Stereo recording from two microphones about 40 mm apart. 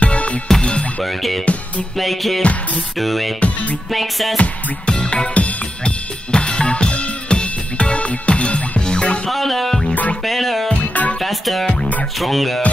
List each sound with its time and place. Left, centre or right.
0.0 s music: left
1.0 s music: centre
1.4 s music: left
2.0 s music: centre
3.3 s music: left
3.9 s music: centre
4.4 s music: left
6.3 s drum kit: left
9.3 s music: centre
10.7 s music: left
11.1 s music: centre